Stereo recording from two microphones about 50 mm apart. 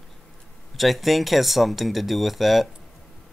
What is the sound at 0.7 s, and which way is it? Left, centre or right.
Speech, centre.